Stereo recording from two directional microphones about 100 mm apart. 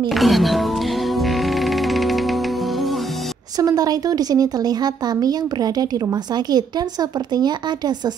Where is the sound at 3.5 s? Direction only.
40° right (ahead or behind).